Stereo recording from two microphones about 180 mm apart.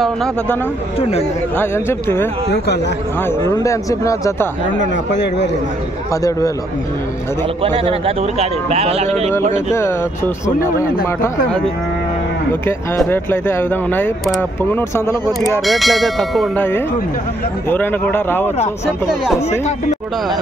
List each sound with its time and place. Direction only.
0.0 s bell: centre (ahead or behind)
0.9 s speech: 35° left (ahead or behind)
1.6 s speech: 15° left (ahead or behind)
2.5 s speech: 70° left (ahead or behind)
3.4 s speech: 20° left (ahead or behind)
4.7 s speech: 80° left
7.6 s speech: 30° right (ahead or behind)
9.8 s speech: 15° left (ahead or behind)
12.6 s speech: 10° left (ahead or behind)
15.6 s bell: centre (ahead or behind)
17.6 s speech: 10° left (ahead or behind)